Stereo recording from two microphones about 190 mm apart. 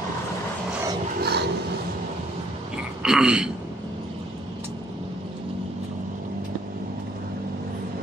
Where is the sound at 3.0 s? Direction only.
5° right (ahead or behind).